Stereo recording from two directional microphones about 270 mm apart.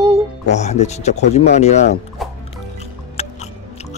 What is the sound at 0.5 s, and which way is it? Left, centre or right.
Speech, left.